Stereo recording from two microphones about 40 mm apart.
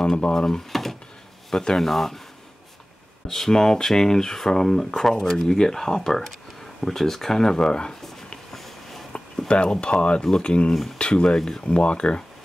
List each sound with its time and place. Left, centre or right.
0.3 s speech: centre
0.7 s drawer open or close: centre
1.5 s speech: centre
3.3 s speech: centre
5.3 s speech: centre; by 8.4 s left
8.5 s a sound: centre
9.5 s speech: left
11.3 s speech: centre
11.6 s speech: left